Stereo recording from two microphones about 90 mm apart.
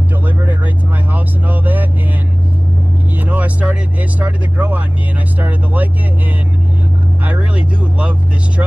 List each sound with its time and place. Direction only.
1.1 s vehicle: 20° right (ahead or behind)
3.2 s vehicle: 15° right (ahead or behind)
4.2 s speech: 15° right (ahead or behind)
7.2 s speech: 15° right (ahead or behind)